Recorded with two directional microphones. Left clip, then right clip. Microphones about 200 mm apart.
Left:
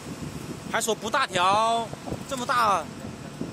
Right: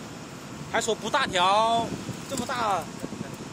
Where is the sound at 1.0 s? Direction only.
15° left (ahead or behind).